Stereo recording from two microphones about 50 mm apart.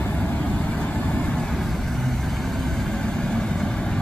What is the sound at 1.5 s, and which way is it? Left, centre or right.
Vehicle, centre.